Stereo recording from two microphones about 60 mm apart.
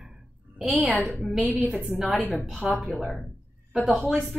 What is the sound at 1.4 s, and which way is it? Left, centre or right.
Speech, right.